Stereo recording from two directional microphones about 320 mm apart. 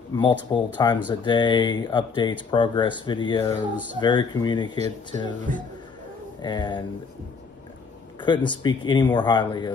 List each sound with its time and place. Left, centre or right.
0.1 s speech: centre
4.7 s speech: right
6.4 s speech: centre
8.2 s speech: centre